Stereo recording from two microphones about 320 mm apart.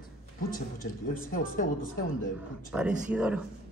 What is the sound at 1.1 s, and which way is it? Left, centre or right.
Speech, left.